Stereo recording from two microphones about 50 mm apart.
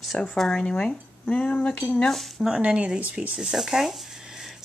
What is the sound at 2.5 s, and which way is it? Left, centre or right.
Speech, right.